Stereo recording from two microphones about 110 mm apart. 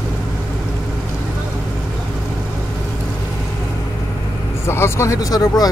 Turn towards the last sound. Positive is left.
turn(degrees=35)  # may be behind; listen again after turning